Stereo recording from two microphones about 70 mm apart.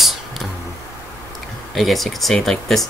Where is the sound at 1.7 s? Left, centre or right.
Centre.